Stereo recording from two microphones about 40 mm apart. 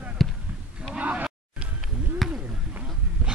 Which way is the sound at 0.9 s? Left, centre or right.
Right.